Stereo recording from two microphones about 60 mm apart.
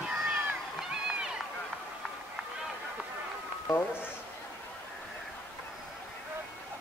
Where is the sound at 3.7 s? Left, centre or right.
Left.